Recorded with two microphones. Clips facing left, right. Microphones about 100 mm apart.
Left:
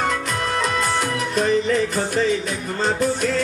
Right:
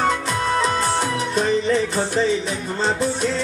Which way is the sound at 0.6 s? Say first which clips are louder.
Even; 30° right (ahead or behind).